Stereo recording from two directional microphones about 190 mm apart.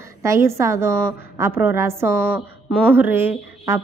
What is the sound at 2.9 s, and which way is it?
Speech, 10° right (ahead or behind).